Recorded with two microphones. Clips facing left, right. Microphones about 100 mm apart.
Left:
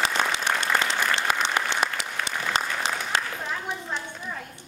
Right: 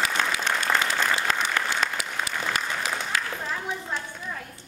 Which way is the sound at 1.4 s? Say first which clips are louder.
Left 1 dB; 20° left (ahead or behind).